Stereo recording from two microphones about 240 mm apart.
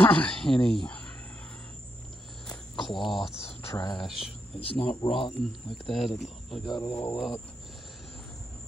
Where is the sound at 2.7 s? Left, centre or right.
Centre.